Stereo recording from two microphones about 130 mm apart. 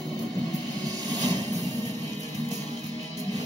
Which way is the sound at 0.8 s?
30° right (ahead or behind).